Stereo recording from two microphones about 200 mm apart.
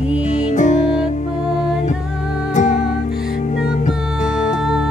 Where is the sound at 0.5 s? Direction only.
40° left (ahead or behind).